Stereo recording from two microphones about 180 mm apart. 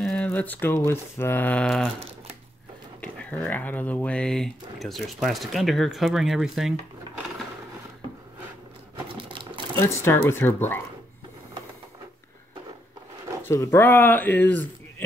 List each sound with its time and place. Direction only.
0.0 s speech: 5° left (ahead or behind)
3.0 s speech: 10° left (ahead or behind)
9.1 s sewing machine: 25° right (ahead or behind)
9.8 s speech: 15° left (ahead or behind)
13.5 s speech: 15° left (ahead or behind)